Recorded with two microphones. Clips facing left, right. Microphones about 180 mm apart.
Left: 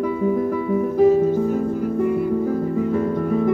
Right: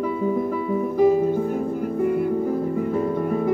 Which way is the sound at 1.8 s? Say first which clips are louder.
Right 1 dB; 55° right (ahead or behind).